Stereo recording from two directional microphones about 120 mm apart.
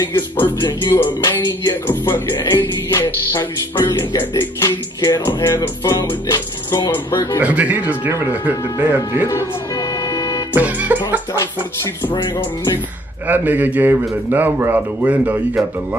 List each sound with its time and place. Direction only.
0.8 s music: 20° left (ahead or behind)
6.9 s music: 20° left (ahead or behind)
7.3 s a man's voice: 10° right (ahead or behind)
10.1 s music: 30° left (ahead or behind)
10.5 s a man's voice: 10° right (ahead or behind)
13.3 s a man's voice: 15° right (ahead or behind)